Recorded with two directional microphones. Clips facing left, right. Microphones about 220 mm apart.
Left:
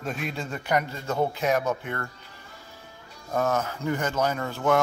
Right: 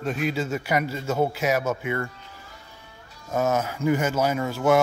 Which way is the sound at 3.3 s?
10° right (ahead or behind).